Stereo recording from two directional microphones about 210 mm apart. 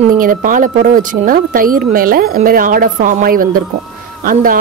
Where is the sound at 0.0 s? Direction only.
40° right (ahead or behind).